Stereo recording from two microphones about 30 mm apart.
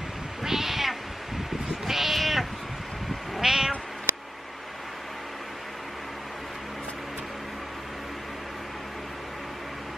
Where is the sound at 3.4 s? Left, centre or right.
Centre.